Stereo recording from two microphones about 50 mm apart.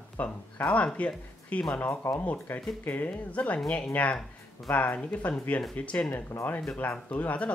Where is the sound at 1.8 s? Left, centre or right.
Left.